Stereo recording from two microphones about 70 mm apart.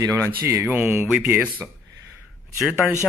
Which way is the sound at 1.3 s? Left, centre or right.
Right.